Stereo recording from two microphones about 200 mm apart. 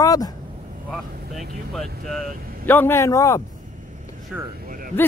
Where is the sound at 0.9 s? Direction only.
Centre (ahead or behind); by 3.4 s 15° left (ahead or behind).